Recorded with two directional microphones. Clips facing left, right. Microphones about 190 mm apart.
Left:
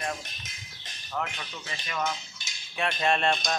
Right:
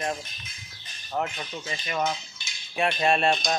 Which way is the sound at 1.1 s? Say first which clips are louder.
Right 4 dB; 30° right (ahead or behind).